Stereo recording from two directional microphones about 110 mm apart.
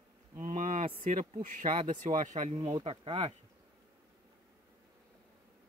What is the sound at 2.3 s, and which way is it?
Speech, 90° right.